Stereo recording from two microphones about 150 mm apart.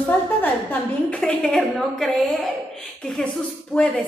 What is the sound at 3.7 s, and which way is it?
Speech, 5° left (ahead or behind).